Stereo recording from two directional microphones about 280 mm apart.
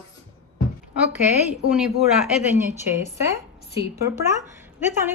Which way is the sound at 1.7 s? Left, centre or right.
Centre.